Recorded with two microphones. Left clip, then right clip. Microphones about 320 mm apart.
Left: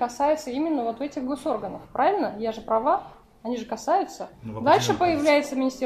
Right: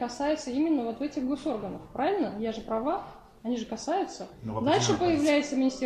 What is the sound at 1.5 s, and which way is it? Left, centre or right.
Speech, left.